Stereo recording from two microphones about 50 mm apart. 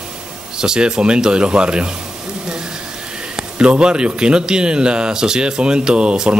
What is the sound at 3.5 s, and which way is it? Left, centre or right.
Speech, right.